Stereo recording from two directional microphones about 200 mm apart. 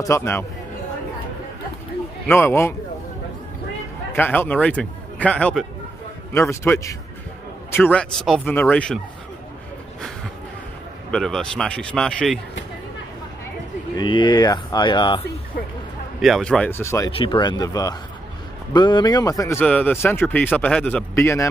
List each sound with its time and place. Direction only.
0.0 s a man's voice: 15° left (ahead or behind)
2.2 s a man's voice: 10° left (ahead or behind)
4.1 s a man's voice: 10° left (ahead or behind)
11.1 s a man's voice: 5° left (ahead or behind)
13.9 s speech: 20° left (ahead or behind)
16.2 s a man's voice: centre (ahead or behind)
17.1 s a man's voice: 25° left (ahead or behind)